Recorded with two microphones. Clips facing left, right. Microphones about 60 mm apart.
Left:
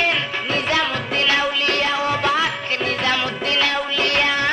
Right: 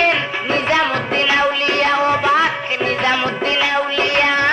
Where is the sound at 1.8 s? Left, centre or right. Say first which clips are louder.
Right 5 dB; right.